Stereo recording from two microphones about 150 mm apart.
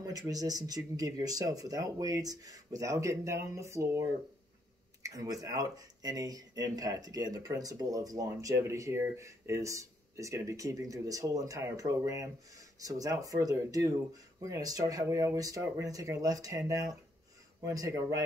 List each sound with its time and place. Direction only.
0.0 s speech: 25° right (ahead or behind)